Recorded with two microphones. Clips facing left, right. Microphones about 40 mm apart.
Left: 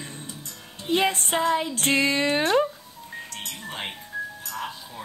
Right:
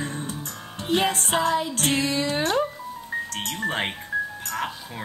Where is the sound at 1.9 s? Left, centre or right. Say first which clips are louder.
Left 4 dB; left.